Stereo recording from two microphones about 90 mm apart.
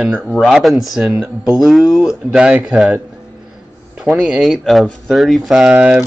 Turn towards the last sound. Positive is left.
turn(degrees=-10)  # may be behind; listen again after turning